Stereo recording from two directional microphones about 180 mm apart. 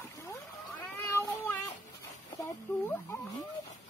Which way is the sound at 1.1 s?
10° left (ahead or behind).